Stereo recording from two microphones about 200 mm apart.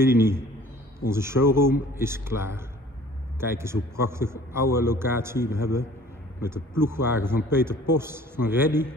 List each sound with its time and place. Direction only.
0.0 s a man's voice: 10° right (ahead or behind)